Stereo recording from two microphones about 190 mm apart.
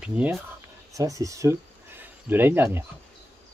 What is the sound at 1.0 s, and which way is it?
Speech, 15° right (ahead or behind).